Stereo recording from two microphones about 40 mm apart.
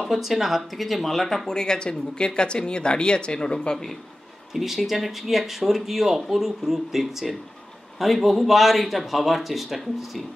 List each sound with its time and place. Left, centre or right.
0.0 s speech: centre
1.5 s speech: centre
4.6 s speech: centre